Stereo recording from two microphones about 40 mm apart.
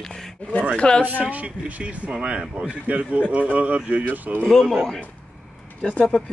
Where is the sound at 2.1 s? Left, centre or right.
Right.